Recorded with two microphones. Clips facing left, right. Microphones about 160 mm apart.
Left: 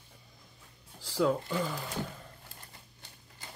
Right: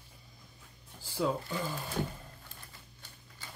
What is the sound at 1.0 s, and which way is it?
Shuffling cards, 90° left.